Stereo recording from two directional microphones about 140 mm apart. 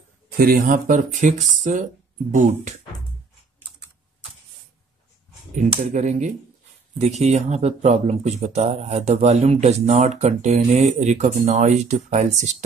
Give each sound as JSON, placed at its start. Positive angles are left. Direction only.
{"t": 0.4, "sound": "speech", "side_deg": -85}
{"t": 5.6, "sound": "speech", "side_deg": -55}